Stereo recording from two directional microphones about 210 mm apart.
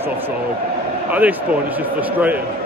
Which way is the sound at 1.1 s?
10° right (ahead or behind).